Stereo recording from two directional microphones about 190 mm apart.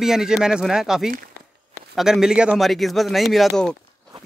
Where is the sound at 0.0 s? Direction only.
Centre (ahead or behind).